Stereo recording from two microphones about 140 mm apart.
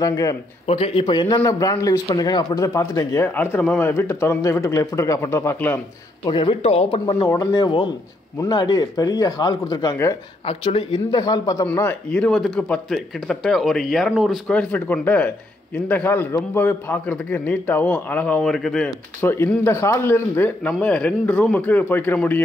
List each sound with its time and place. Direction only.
0.0 s a man's voice: 25° left (ahead or behind)
0.7 s a man's voice: 45° left (ahead or behind); by 5.8 s 15° left (ahead or behind)
6.2 s speech: 35° left (ahead or behind)
7.2 s a man's voice: 25° left (ahead or behind)
10.4 s speech: 40° left (ahead or behind); by 11.6 s 25° left (ahead or behind)
11.6 s speech: 15° left (ahead or behind)
19.2 s speech: 15° left (ahead or behind)